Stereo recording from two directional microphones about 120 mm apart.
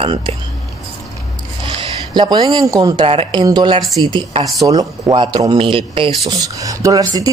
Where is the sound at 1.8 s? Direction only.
40° right (ahead or behind).